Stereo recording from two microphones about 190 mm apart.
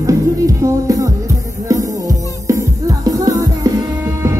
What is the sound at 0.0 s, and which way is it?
Music, 15° right (ahead or behind).